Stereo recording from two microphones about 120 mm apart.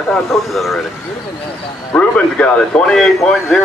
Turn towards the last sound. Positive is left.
turn(degrees=5)  # may be behind; listen again after turning